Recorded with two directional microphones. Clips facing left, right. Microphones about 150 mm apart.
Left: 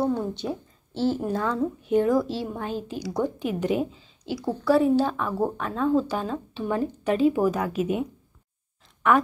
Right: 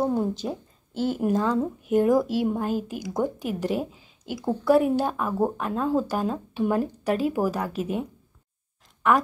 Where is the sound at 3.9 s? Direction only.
10° right (ahead or behind).